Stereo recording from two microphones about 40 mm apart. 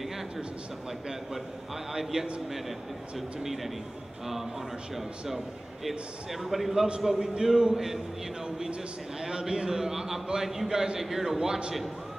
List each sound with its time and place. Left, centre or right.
1.9 s a man's voice: centre
5.9 s a man's voice: centre
9.2 s a man's voice: centre
11.3 s a man's voice: centre